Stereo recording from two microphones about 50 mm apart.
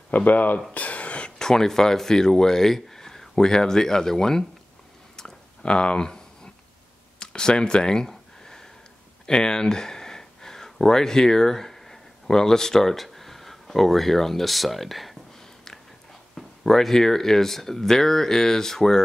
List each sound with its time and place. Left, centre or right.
0.1 s speech: left
0.7 s a sound: left
1.4 s speech: centre
5.1 s chewing: centre
7.2 s a sound: centre
9.2 s speech: centre
16.3 s speech: centre